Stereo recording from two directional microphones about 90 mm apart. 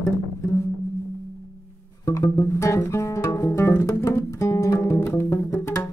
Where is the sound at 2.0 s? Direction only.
30° left (ahead or behind).